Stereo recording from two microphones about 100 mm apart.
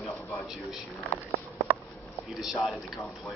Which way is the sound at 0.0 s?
30° left (ahead or behind).